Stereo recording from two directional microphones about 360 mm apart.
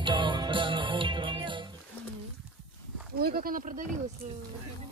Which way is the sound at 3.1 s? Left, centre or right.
Right.